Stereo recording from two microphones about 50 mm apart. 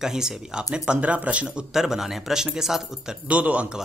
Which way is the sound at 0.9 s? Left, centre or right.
Right.